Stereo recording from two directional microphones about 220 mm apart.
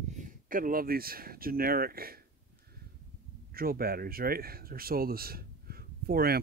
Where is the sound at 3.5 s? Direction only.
45° right (ahead or behind).